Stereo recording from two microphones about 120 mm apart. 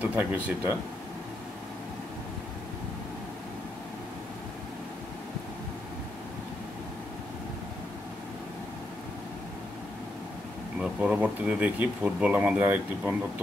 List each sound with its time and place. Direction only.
0.0 s speech: 15° right (ahead or behind)
10.8 s speech: 10° right (ahead or behind)